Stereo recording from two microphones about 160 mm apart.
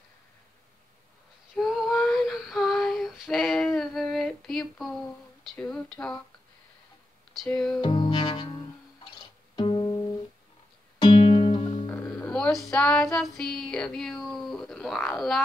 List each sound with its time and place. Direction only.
1.5 s female singing: centre (ahead or behind)
7.4 s music: 5° left (ahead or behind)
7.8 s music: 25° left (ahead or behind)
9.6 s music: 30° left (ahead or behind)
11.8 s music: 15° left (ahead or behind)